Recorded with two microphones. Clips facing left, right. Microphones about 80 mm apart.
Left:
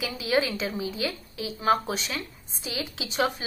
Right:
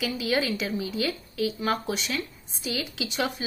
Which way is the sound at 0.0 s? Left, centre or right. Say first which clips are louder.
Left 1 dB; left.